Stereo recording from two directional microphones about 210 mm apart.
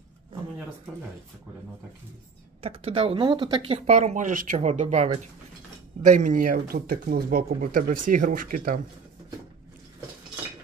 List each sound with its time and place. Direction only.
2.6 s speech: 30° right (ahead or behind)
3.8 s speech: 35° right (ahead or behind)